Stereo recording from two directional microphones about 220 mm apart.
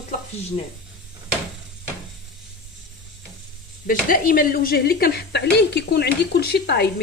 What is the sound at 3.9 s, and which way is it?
A woman's voice, 40° left (ahead or behind).